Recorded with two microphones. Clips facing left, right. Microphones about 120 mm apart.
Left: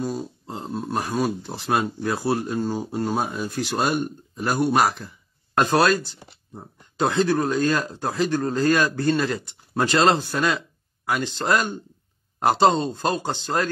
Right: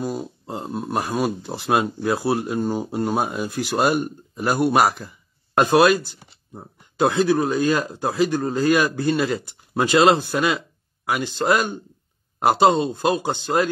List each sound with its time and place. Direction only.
0.0 s speech: 10° right (ahead or behind)